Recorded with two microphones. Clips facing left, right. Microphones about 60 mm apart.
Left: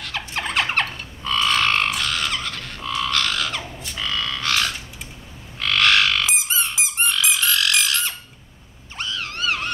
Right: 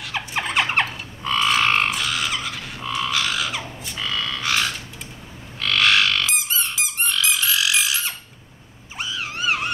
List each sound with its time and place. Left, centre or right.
0.0 s a sound: centre
0.7 s frog: centre
6.2 s a sound: centre
7.1 s frog: centre
7.4 s frog: centre
8.9 s wild animals: centre